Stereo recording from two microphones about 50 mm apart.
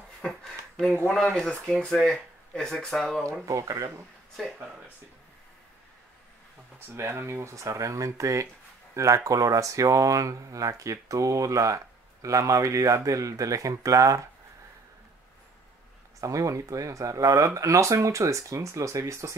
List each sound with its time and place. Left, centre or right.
0.2 s speech: centre
3.4 s speech: right
7.0 s speech: right
16.2 s speech: right